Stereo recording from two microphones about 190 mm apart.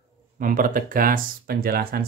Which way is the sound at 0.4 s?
45° right (ahead or behind).